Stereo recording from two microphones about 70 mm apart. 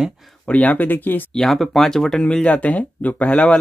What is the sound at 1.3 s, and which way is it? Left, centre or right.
Speech, centre.